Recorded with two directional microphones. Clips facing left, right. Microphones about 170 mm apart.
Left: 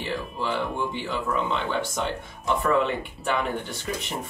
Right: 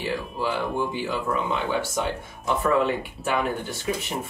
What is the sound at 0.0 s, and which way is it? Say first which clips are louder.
Speech: right 2 dB; 5° right (ahead or behind).